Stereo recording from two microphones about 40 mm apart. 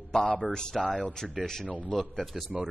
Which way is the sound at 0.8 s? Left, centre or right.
Left.